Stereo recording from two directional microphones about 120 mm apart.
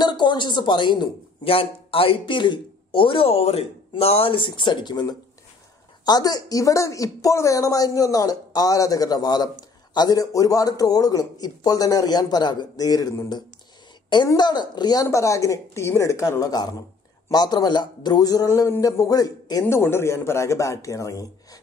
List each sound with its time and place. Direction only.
0.0 s speech: 35° left (ahead or behind)
15.0 s a woman's voice: 25° left (ahead or behind)
19.6 s a woman's voice: 20° left (ahead or behind)